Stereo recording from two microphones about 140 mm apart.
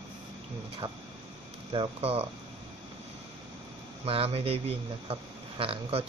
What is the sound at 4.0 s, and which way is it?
Speech, 45° right (ahead or behind).